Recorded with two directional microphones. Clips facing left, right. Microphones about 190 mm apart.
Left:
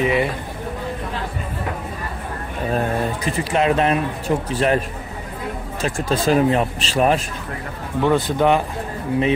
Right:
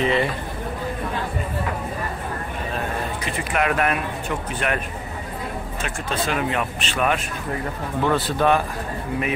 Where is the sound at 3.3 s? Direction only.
35° left (ahead or behind).